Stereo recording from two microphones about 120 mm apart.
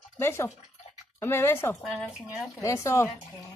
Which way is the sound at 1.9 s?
5° right (ahead or behind).